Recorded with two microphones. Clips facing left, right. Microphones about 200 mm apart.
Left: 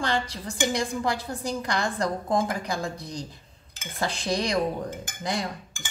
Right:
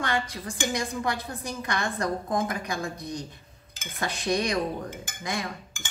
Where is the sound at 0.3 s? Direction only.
30° left (ahead or behind).